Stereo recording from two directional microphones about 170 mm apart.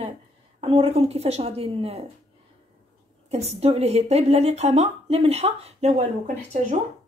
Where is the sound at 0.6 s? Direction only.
35° right (ahead or behind).